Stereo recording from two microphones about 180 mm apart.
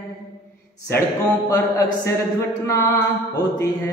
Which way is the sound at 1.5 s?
20° left (ahead or behind).